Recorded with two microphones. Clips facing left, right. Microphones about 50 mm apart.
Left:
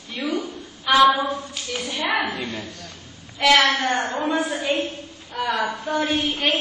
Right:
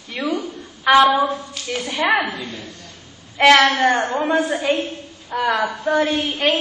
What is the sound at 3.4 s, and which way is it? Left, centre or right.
A woman's voice, right.